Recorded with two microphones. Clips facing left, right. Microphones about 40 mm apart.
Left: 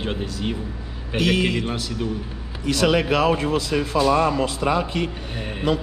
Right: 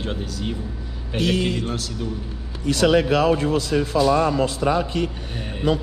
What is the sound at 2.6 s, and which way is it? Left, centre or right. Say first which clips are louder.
Speech: right 2 dB; left.